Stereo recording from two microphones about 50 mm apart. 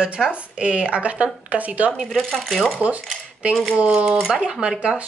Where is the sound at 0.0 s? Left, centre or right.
Right.